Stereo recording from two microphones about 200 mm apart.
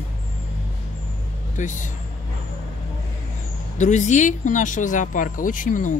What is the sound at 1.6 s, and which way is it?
Speech, 40° left (ahead or behind).